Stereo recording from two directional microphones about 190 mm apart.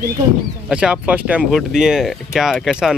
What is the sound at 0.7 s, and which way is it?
Speech, 5° right (ahead or behind).